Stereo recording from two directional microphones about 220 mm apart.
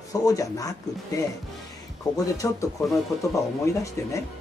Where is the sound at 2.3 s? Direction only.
15° left (ahead or behind).